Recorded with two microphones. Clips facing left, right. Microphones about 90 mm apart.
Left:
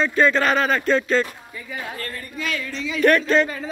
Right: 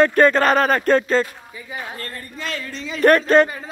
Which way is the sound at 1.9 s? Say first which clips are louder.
Left 1 dB; 35° right (ahead or behind).